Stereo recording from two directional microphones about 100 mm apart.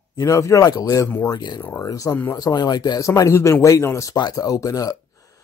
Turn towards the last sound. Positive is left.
turn(degrees=35)  # may be behind; listen again after turning